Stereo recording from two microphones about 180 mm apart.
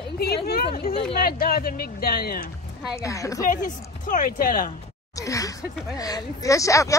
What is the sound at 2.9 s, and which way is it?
Speech, 15° left (ahead or behind).